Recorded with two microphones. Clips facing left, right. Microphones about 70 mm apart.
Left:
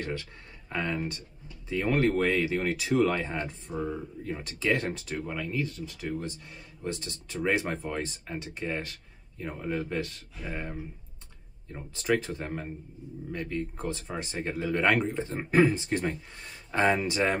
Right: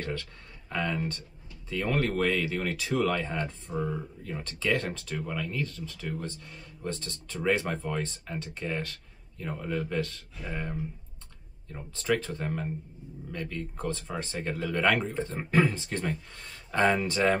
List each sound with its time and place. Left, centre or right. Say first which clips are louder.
0.0 s speech: even; centre
11.9 s speech: left 1 dB; centre